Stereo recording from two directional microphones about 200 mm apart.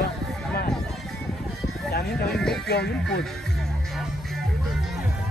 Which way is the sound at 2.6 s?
55° left (ahead or behind).